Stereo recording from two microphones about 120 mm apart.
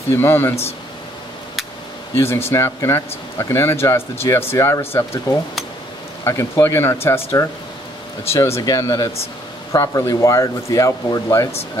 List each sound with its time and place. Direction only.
0.1 s speech: 20° left (ahead or behind)
2.1 s speech: 20° left (ahead or behind)
6.2 s speech: 20° left (ahead or behind)
8.3 s speech: 20° left (ahead or behind)